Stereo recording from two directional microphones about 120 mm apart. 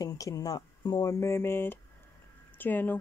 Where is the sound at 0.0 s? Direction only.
30° left (ahead or behind).